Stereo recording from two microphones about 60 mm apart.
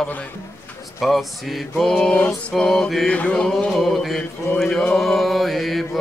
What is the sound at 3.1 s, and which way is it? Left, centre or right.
Mantra, left.